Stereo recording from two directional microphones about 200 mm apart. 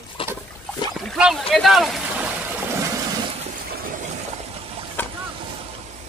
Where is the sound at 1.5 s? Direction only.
Centre (ahead or behind); by 3.3 s 15° right (ahead or behind).